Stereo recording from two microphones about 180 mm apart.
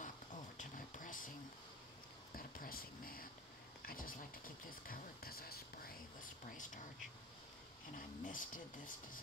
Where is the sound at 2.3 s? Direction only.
55° left (ahead or behind).